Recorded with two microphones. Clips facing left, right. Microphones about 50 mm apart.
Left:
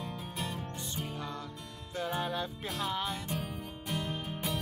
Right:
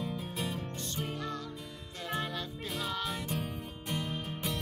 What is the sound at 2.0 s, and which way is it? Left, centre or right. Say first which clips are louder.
Music: left 3 dB; left.